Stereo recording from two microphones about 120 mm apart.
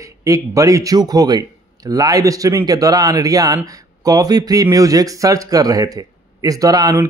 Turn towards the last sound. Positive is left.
turn(degrees=-30)  # may be behind; listen again after turning